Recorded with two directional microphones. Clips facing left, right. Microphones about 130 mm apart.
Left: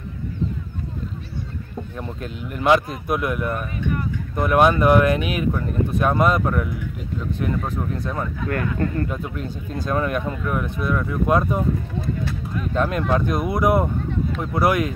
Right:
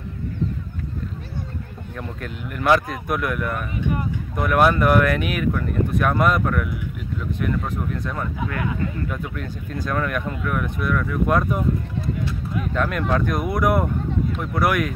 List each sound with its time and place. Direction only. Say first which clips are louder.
2.0 s speech: right 1 dB; 25° left (ahead or behind)
8.5 s speech: left 6 dB; 50° left (ahead or behind)
9.1 s speech: left 1 dB; 25° left (ahead or behind)
12.7 s speech: left 2 dB; 25° left (ahead or behind)